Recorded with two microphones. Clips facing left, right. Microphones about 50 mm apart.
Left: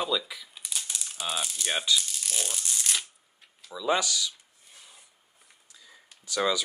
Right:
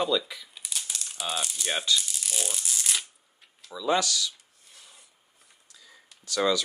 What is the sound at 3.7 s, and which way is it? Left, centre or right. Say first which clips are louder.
Speech: right 1 dB; centre.